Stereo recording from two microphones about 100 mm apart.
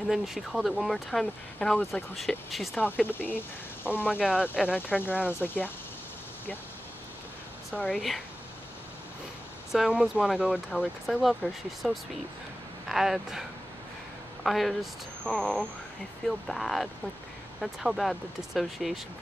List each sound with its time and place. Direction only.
0.1 s speech: centre (ahead or behind)
1.2 s speech: 15° left (ahead or behind)
2.1 s speech: centre (ahead or behind)
3.1 s speech: 20° left (ahead or behind)
4.1 s speech: 10° right (ahead or behind)
4.7 s speech: 15° left (ahead or behind)
7.8 s speech: 5° left (ahead or behind)
9.7 s speech: 5° right (ahead or behind)